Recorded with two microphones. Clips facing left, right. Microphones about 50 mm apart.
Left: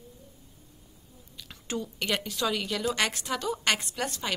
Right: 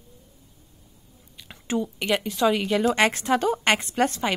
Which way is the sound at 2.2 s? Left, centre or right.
Right.